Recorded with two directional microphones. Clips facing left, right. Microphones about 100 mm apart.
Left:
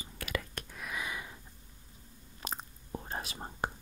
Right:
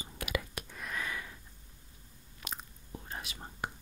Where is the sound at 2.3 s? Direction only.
35° left (ahead or behind).